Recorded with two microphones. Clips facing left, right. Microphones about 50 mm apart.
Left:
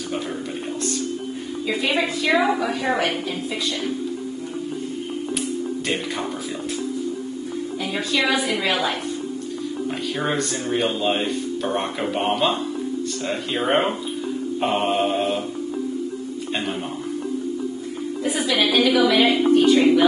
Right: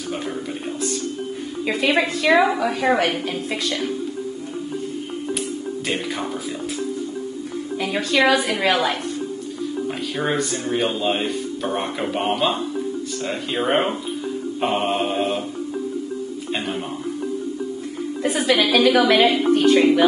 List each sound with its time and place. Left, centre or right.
1.7 s a woman's voice: right
7.8 s a woman's voice: right
10.1 s speech: centre
14.6 s chant: centre
18.2 s a woman's voice: right